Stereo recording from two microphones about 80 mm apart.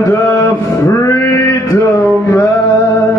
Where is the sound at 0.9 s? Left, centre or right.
Left.